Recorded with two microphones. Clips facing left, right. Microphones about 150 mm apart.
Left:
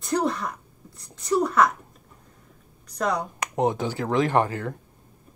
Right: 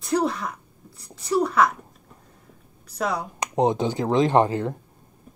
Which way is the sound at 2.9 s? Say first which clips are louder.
Left 1 dB; 5° right (ahead or behind).